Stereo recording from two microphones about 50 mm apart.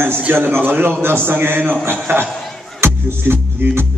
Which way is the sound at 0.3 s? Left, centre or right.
Right.